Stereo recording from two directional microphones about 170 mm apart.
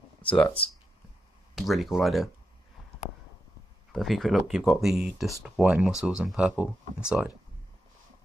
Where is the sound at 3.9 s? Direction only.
Centre (ahead or behind).